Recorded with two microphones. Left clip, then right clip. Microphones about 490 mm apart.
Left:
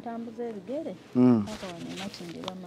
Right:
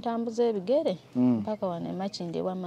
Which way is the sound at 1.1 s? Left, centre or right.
Centre.